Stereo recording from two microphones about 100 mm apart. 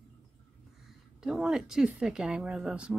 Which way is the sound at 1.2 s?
5° right (ahead or behind).